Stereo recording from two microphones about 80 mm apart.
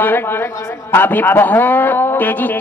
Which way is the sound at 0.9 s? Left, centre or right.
Left.